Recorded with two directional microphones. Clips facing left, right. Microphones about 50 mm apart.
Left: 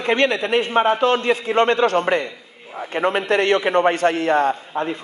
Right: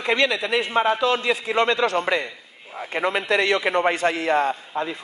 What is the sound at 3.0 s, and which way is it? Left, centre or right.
Speech, left.